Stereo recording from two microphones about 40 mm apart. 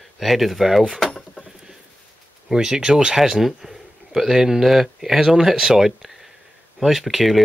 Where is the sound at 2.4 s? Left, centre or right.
Centre.